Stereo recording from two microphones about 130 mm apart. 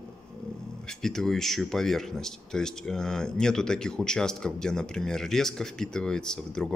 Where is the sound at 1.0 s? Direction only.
5° left (ahead or behind).